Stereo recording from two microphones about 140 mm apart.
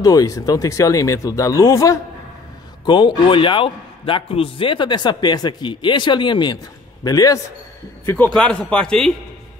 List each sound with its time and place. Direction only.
0.0 s speech: 25° left (ahead or behind)
2.8 s a man's voice: 35° left (ahead or behind)
8.4 s speech: 10° left (ahead or behind)